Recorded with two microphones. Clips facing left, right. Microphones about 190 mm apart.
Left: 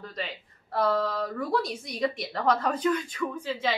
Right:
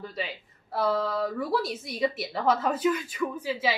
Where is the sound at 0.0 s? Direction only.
5° right (ahead or behind).